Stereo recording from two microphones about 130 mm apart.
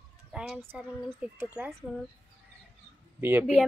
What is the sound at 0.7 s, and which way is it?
Speech, 15° right (ahead or behind).